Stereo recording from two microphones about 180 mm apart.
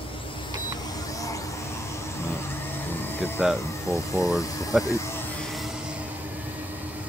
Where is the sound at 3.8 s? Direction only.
15° left (ahead or behind).